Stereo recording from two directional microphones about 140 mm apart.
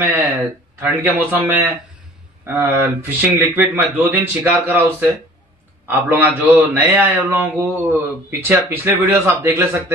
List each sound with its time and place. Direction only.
0.7 s a man's voice: 15° right (ahead or behind)